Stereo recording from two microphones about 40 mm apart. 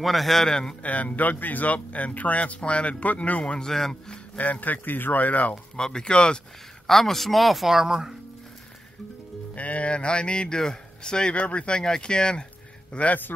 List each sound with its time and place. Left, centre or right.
0.0 s speech: centre
0.5 s speech: centre
0.8 s speech: left
3.5 s speech: centre
4.4 s speech: left
4.8 s speech: left
5.5 s speech: centre
6.9 s speech: centre
9.6 s speech: left
11.3 s speech: left
12.9 s speech: left